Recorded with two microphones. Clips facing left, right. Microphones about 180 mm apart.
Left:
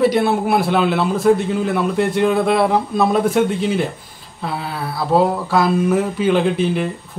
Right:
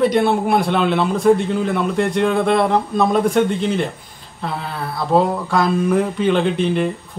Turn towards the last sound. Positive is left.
turn(degrees=5)  # may be behind; listen again after turning